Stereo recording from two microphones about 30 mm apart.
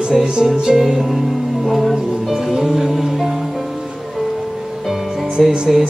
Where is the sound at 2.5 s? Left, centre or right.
Centre.